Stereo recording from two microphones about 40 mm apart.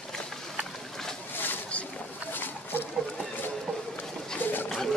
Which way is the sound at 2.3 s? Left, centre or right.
Left.